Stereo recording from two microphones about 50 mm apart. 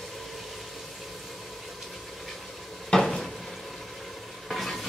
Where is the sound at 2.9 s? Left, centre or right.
Centre.